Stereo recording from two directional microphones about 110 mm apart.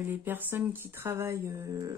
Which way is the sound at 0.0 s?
20° right (ahead or behind).